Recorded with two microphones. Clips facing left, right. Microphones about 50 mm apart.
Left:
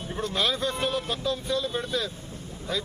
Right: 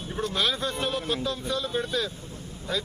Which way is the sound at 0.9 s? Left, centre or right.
Right.